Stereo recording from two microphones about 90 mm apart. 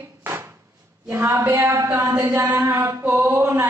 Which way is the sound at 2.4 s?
25° right (ahead or behind).